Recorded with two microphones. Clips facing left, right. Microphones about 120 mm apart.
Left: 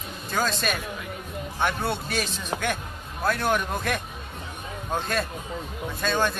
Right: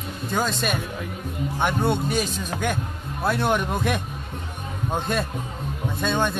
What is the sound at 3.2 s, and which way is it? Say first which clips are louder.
Speech: right 2 dB; 25° right (ahead or behind).